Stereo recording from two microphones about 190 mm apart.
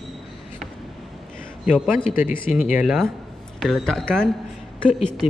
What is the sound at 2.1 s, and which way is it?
Speech, 45° left (ahead or behind).